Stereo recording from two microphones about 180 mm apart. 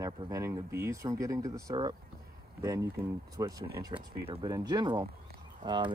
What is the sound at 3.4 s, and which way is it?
Speech, 20° right (ahead or behind).